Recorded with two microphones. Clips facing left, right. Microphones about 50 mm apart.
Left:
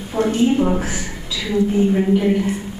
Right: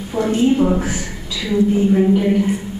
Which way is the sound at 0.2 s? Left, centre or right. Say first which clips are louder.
Left 1 dB; left.